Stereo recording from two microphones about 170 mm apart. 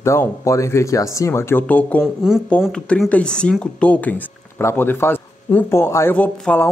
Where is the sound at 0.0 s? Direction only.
15° left (ahead or behind).